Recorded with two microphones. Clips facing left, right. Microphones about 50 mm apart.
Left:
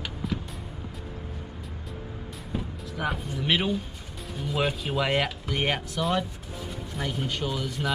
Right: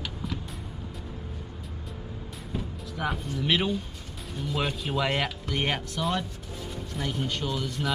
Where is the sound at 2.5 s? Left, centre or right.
Centre.